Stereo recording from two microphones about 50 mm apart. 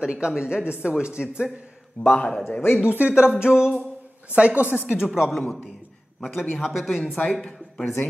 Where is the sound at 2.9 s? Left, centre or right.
Right.